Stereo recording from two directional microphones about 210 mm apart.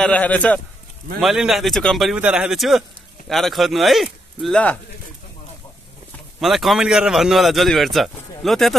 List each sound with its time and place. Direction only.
0.0 s a man's voice: 5° left (ahead or behind)
6.4 s a man's voice: centre (ahead or behind)